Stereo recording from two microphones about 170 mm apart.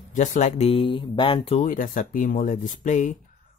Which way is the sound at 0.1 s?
45° left (ahead or behind).